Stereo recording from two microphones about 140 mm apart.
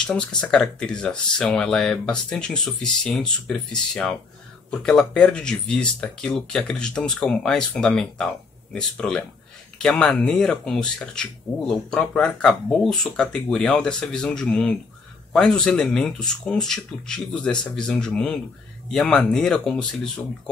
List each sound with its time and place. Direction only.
0.4 s speech: 5° left (ahead or behind)